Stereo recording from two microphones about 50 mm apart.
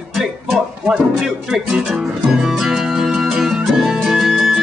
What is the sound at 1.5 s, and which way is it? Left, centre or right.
Music, centre.